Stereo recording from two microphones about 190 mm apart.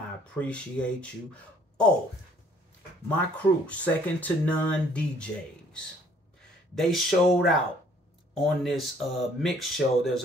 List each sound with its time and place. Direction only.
0.3 s speech: 5° left (ahead or behind)
3.6 s speech: 10° left (ahead or behind)